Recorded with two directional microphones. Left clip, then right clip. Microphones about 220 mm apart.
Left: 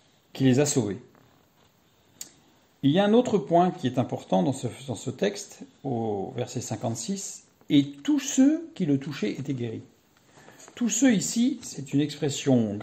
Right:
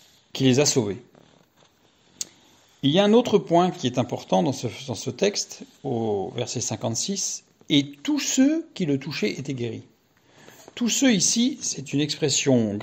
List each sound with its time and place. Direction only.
0.3 s speech: 35° right (ahead or behind)
2.2 s tick-tock: 35° right (ahead or behind)
2.8 s speech: 35° right (ahead or behind)